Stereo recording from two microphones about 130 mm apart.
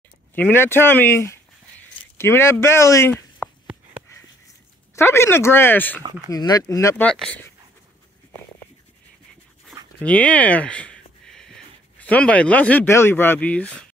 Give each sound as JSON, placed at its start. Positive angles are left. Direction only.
{"t": 0.3, "sound": "speech", "side_deg": 15}
{"t": 4.9, "sound": "speech", "side_deg": 20}
{"t": 6.3, "sound": "speech", "side_deg": 30}
{"t": 7.0, "sound": "speech", "side_deg": 10}
{"t": 10.0, "sound": "speech", "side_deg": 10}